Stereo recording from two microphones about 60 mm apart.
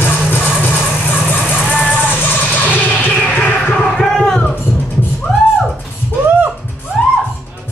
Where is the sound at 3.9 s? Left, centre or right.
Centre.